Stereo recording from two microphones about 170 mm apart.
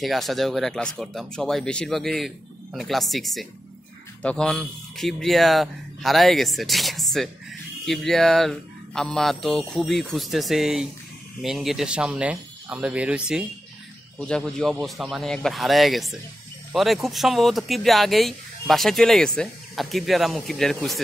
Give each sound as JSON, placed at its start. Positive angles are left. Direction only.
{"t": 0.0, "sound": "speech", "side_deg": 0}
{"t": 14.2, "sound": "speech", "side_deg": 5}